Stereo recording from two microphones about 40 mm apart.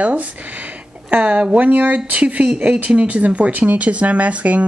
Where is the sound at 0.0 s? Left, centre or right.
Right.